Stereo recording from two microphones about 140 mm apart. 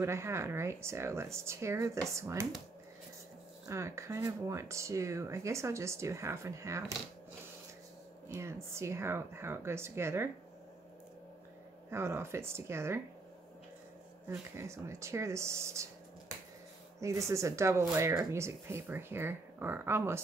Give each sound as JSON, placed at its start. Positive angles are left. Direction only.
{"t": 0.0, "sound": "speech", "side_deg": -20}
{"t": 3.6, "sound": "speech", "side_deg": -20}
{"t": 8.3, "sound": "speech", "side_deg": -20}
{"t": 11.9, "sound": "speech", "side_deg": -20}
{"t": 14.6, "sound": "speech", "side_deg": -20}
{"t": 17.0, "sound": "speech", "side_deg": -20}